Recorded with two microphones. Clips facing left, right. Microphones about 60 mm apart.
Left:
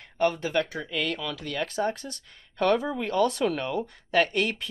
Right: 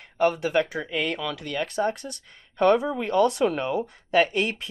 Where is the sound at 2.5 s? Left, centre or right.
Centre.